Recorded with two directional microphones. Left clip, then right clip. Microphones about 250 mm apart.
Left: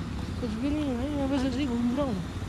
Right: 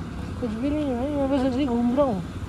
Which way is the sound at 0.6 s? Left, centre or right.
Centre.